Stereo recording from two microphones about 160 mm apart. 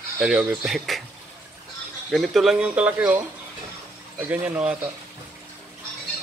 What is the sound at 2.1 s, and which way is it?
Speech, centre (ahead or behind).